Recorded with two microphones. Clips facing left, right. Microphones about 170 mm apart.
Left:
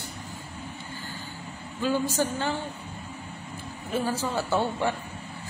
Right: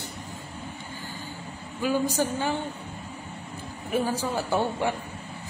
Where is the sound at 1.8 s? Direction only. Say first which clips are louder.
Right 1 dB; 15° right (ahead or behind).